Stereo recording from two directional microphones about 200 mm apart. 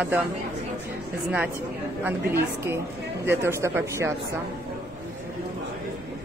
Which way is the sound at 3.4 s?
15° right (ahead or behind).